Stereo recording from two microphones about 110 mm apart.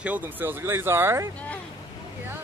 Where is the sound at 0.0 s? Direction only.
15° right (ahead or behind).